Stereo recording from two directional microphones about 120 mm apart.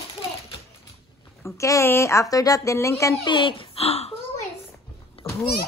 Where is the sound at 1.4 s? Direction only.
25° left (ahead or behind).